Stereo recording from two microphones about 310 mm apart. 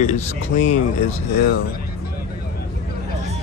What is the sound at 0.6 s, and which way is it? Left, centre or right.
Speech, left.